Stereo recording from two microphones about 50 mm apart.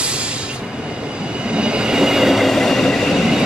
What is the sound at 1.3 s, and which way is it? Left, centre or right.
Train, right.